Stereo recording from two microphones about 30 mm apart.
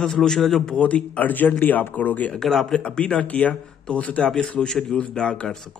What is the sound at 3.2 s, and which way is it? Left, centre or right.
Speech, left.